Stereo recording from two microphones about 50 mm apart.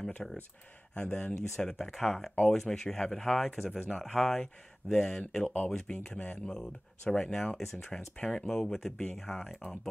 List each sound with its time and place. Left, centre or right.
0.2 s speech: centre
0.9 s speech: left
3.5 s speech: centre
4.0 s speech: centre
6.1 s speech: left
6.5 s speech: centre
9.3 s speech: left